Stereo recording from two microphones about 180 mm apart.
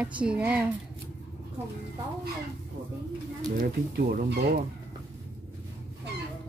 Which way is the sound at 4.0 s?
55° right (ahead or behind).